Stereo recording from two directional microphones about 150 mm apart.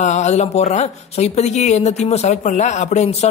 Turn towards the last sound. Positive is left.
turn(degrees=45)  # may be behind; listen again after turning